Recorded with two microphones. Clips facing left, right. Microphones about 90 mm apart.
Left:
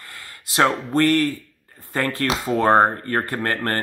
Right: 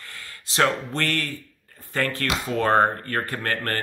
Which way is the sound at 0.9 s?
20° left (ahead or behind).